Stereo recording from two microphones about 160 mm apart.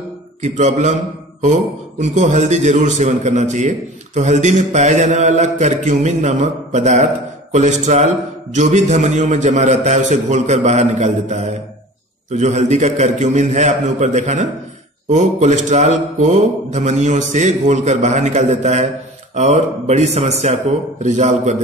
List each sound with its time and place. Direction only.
0.4 s a man's voice: 45° right (ahead or behind)
2.0 s a man's voice: 45° right (ahead or behind)